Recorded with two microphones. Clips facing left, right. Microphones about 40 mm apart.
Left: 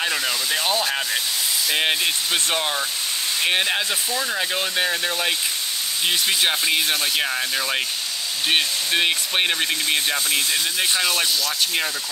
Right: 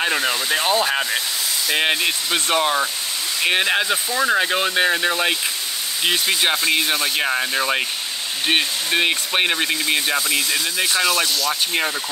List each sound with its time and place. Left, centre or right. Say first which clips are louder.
0.0 s speech: right 3 dB; right
0.8 s speech: right 3 dB; centre